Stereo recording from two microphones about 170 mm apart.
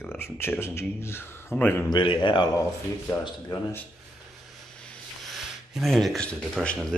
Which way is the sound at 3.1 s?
15° left (ahead or behind).